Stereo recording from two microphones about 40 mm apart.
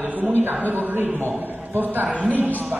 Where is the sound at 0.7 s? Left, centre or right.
Right.